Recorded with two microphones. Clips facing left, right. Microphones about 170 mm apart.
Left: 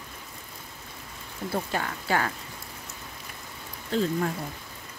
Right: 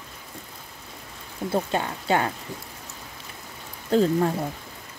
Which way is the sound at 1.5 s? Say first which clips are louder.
Right 5 dB; 25° right (ahead or behind).